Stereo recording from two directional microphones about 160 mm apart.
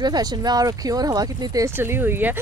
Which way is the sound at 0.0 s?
25° right (ahead or behind).